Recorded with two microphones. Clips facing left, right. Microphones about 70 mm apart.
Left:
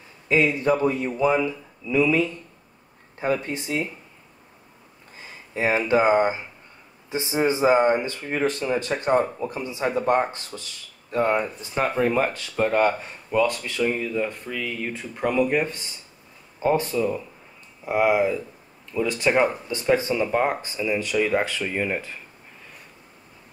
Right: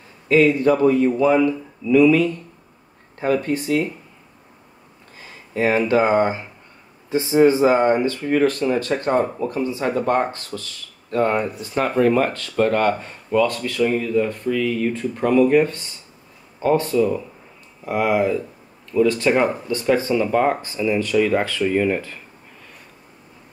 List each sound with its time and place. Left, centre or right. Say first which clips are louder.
0.3 s speech: right 5 dB; centre
5.5 s speech: right 3 dB; centre
11.1 s speech: right 3 dB; centre
13.8 s speech: right 5 dB; centre